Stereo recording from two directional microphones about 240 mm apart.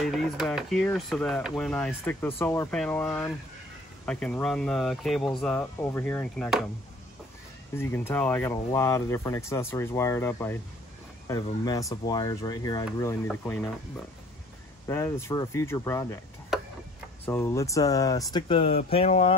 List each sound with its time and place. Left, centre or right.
0.0 s speech: centre
7.7 s speech: centre
14.9 s speech: centre
16.5 s tick-tock: centre
17.3 s speech: centre
18.9 s a sound: left